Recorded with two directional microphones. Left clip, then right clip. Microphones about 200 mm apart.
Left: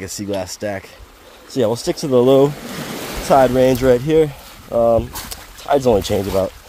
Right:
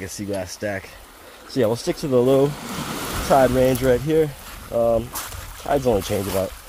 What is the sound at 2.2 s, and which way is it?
Speech, 30° left (ahead or behind).